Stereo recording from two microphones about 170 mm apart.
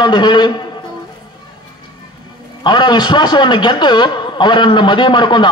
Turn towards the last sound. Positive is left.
turn(degrees=25)  # may be behind; listen again after turning